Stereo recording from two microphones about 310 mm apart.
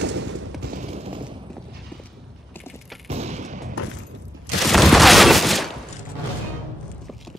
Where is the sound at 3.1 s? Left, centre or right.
Right.